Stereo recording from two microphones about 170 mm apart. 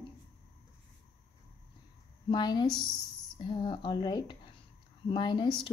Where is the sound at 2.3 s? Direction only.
25° left (ahead or behind).